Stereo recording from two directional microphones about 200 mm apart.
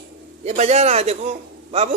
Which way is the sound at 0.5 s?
35° right (ahead or behind).